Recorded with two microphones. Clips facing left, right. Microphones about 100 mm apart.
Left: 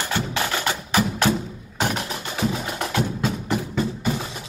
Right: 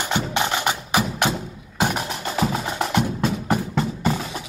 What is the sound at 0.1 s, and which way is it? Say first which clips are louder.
Music: right 3 dB; 20° right (ahead or behind).